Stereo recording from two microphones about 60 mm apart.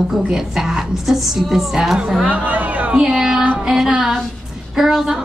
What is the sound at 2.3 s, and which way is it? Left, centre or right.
Speech, right.